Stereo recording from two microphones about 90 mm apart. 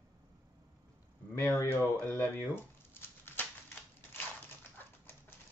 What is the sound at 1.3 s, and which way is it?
Speech, 35° left (ahead or behind).